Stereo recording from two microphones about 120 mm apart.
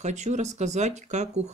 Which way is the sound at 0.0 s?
75° right (ahead or behind).